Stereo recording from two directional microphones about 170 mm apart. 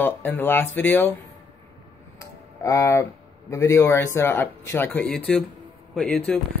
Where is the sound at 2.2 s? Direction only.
20° left (ahead or behind).